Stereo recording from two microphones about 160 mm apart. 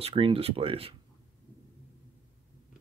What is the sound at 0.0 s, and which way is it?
Speech, 35° right (ahead or behind).